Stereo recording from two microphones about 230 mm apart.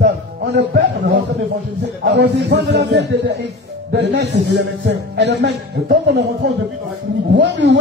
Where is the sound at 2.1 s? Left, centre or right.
Right.